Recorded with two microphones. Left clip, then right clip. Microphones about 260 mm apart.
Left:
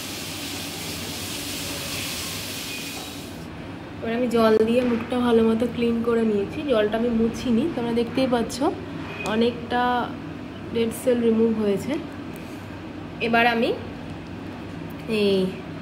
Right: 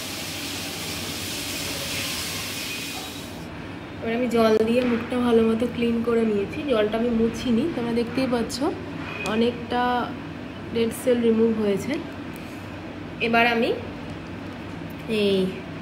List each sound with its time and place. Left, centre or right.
4.0 s a woman's voice: centre
13.2 s a woman's voice: centre
15.0 s a woman's voice: centre